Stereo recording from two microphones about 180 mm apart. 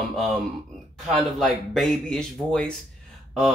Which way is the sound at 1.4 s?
5° left (ahead or behind).